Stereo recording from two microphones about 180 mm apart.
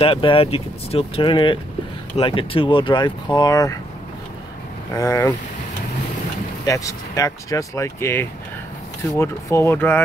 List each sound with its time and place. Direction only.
0.0 s speech: 30° left (ahead or behind)
4.9 s speech: 15° left (ahead or behind)
6.6 s speech: 20° left (ahead or behind)